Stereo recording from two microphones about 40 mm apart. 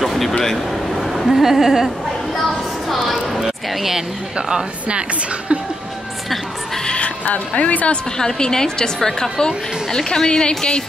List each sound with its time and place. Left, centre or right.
0.0 s a sound: centre
0.3 s a woman's voice: centre
0.9 s a sound: centre
1.3 s speech: centre
2.4 s a sound: centre
3.3 s speech: centre
4.4 s a woman's voice: centre
6.8 s music: left
7.2 s a woman's voice: left
8.2 s a woman's voice: centre